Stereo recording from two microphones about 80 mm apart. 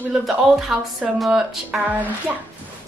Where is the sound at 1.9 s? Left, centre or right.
Centre.